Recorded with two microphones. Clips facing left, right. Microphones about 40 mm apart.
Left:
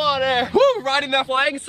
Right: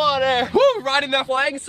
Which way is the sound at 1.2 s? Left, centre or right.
Left.